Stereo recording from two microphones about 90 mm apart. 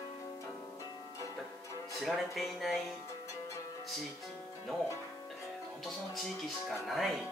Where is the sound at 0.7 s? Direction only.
35° left (ahead or behind).